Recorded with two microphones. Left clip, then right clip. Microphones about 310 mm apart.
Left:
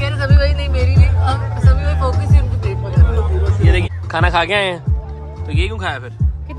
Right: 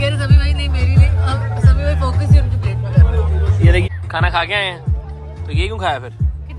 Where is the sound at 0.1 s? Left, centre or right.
Left.